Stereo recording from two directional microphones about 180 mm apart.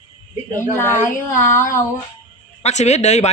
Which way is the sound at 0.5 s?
15° left (ahead or behind).